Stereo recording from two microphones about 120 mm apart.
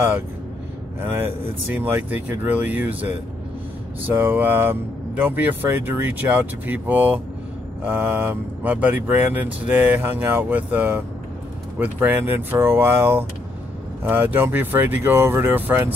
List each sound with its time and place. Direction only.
1.7 s speech: 15° right (ahead or behind)
4.1 s speech: 20° right (ahead or behind)